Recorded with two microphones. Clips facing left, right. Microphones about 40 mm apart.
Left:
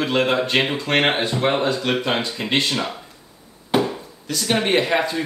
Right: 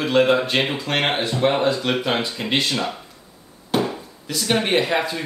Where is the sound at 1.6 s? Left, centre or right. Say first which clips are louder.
Right 1 dB; centre.